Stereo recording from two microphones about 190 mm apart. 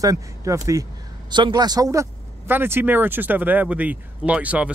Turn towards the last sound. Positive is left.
turn(degrees=-5)  # may be behind; listen again after turning